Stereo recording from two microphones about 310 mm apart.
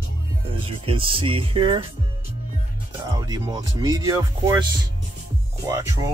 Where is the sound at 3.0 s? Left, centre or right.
Centre.